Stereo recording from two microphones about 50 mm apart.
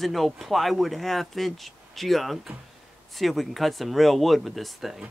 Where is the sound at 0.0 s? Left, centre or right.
Centre.